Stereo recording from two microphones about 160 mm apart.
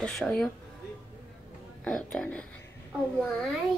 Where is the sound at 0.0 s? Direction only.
5° left (ahead or behind).